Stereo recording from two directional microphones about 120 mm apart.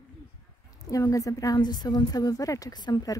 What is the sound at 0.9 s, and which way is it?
A woman's voice, 30° left (ahead or behind).